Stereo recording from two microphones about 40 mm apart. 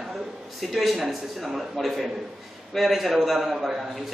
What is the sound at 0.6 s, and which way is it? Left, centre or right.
A man's voice, centre.